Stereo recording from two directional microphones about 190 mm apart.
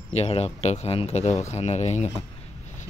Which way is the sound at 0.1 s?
35° left (ahead or behind).